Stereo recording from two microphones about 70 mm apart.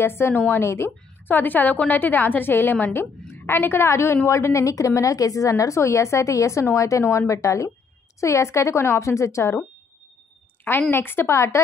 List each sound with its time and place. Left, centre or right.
0.0 s a woman's voice: left
10.9 s a woman's voice: left